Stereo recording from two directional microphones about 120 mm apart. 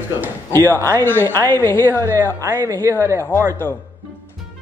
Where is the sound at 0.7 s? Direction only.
20° left (ahead or behind).